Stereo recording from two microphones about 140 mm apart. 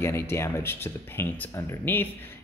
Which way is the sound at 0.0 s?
20° left (ahead or behind).